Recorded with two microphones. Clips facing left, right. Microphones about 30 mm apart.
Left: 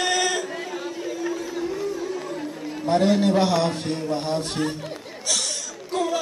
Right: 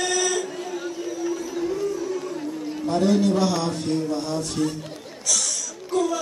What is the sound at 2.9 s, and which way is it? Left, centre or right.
A man's voice, left.